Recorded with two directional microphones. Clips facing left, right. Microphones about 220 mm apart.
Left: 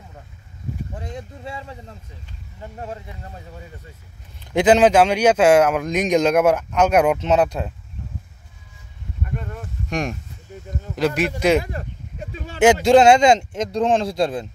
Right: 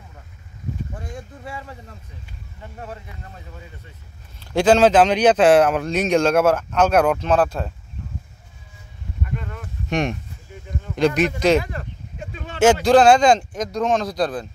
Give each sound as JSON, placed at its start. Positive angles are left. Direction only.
{"t": 0.9, "sound": "a man's voice", "side_deg": 20}
{"t": 4.4, "sound": "a man's voice", "side_deg": 20}
{"t": 9.8, "sound": "speech", "side_deg": 0}
{"t": 10.5, "sound": "a sound", "side_deg": 40}
{"t": 11.0, "sound": "a man's voice", "side_deg": 5}
{"t": 11.7, "sound": "a sound", "side_deg": 35}
{"t": 12.5, "sound": "a man's voice", "side_deg": 20}